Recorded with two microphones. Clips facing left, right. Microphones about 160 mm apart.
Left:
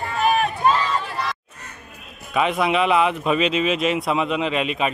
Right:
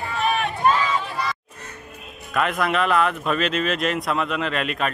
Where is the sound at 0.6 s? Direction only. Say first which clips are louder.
Right 3 dB; centre (ahead or behind).